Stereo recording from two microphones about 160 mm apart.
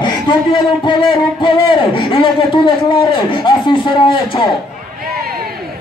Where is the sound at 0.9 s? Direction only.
30° left (ahead or behind).